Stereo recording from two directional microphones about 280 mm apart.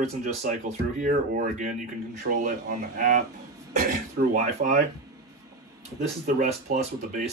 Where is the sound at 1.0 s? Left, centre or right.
Right.